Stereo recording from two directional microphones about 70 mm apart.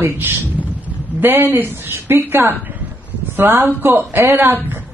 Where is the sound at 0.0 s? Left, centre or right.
Right.